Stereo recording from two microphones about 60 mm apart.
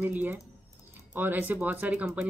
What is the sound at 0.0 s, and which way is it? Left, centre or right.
Speech, right.